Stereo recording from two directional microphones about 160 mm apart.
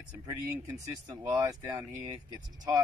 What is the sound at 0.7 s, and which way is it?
Speech, 20° right (ahead or behind).